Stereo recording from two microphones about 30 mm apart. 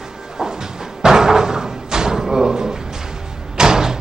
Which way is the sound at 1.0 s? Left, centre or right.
Right.